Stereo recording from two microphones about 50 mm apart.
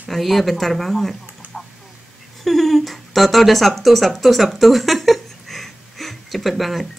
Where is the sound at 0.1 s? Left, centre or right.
Centre.